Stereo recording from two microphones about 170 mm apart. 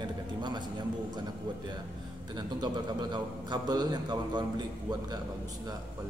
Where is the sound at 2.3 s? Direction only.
25° right (ahead or behind).